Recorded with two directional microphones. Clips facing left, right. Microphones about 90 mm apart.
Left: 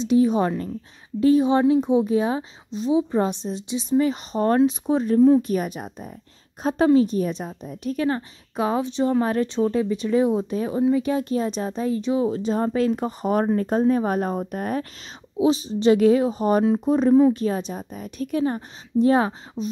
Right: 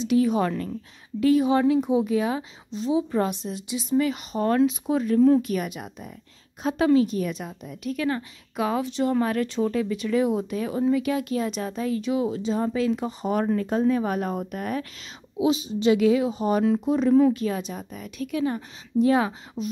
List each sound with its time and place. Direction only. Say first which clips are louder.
0.0 s speech: left 3 dB; 25° left (ahead or behind)
19.6 s beatboxing: left 2 dB; 10° right (ahead or behind)